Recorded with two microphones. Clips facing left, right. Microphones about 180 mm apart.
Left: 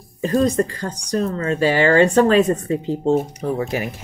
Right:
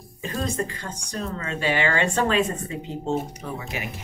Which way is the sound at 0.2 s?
40° left (ahead or behind).